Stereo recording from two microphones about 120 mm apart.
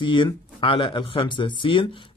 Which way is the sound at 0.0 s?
45° left (ahead or behind).